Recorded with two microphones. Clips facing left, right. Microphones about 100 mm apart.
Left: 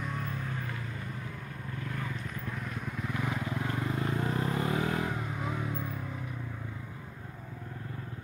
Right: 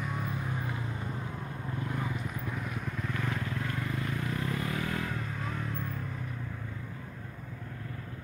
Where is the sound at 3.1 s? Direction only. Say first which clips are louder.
Left 2 dB; 15° left (ahead or behind).